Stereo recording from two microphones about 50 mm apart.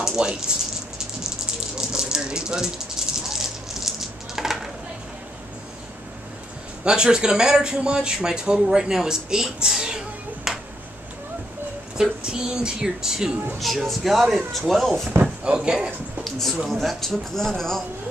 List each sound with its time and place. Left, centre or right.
0.2 s rattle: centre
6.8 s speech: centre
12.0 s speech: centre
13.8 s speech: centre
15.4 s speech: centre
16.3 s a sound: centre
16.7 s speech: centre